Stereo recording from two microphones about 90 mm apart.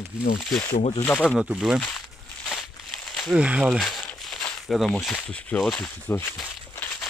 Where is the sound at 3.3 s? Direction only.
10° right (ahead or behind); by 5.9 s 10° left (ahead or behind).